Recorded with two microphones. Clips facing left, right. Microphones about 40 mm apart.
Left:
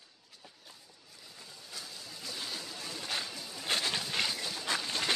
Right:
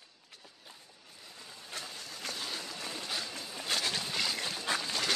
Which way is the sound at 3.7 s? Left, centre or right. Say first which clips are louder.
Left 1 dB; left.